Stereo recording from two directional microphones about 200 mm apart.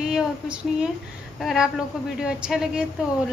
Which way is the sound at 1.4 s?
Centre (ahead or behind).